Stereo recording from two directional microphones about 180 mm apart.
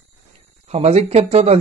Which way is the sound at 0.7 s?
35° right (ahead or behind).